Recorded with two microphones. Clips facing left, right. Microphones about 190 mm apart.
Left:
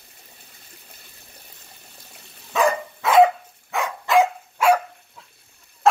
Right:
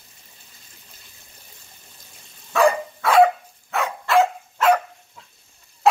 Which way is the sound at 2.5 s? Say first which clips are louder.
Right 3 dB; 20° left (ahead or behind).